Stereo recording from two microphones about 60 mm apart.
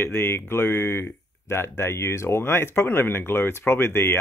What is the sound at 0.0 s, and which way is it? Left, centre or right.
Speech, left.